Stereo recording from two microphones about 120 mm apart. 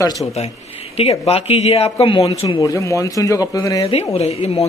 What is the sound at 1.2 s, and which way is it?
A man's voice, 55° left (ahead or behind).